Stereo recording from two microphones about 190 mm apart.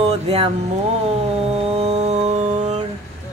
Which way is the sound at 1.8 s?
35° right (ahead or behind).